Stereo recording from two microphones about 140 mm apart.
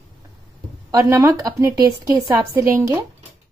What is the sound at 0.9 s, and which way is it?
A woman's voice, 20° right (ahead or behind).